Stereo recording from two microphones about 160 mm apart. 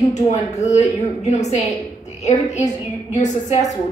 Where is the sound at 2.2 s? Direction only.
45° left (ahead or behind).